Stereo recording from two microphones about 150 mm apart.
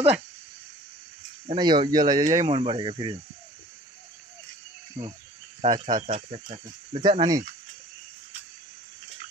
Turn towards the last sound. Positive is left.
turn(degrees=-30)  # may be behind; listen again after turning